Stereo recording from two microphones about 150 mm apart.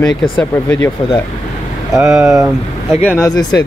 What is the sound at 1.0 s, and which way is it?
Speech, 35° left (ahead or behind).